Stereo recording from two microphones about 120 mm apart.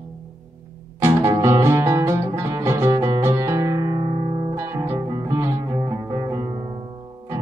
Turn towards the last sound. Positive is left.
turn(degrees=-30)  # may be behind; listen again after turning